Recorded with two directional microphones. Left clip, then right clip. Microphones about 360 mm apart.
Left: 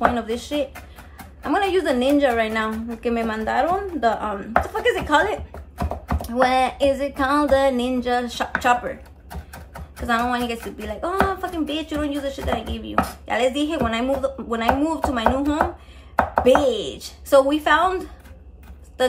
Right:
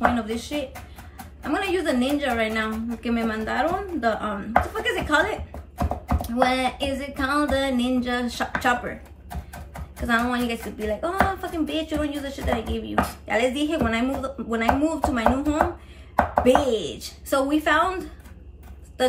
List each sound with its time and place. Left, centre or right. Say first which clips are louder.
0.1 s speech: left 3 dB; centre
10.0 s speech: left 2 dB; centre